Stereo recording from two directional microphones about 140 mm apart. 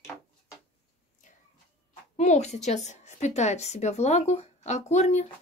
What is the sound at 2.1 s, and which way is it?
A woman's voice, 55° left (ahead or behind).